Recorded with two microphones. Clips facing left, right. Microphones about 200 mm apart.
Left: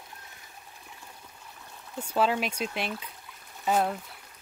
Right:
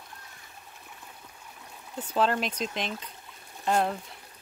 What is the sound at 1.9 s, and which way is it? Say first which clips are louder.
Speech: even; 10° left (ahead or behind).